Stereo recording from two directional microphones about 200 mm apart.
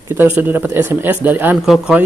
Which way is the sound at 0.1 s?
10° right (ahead or behind).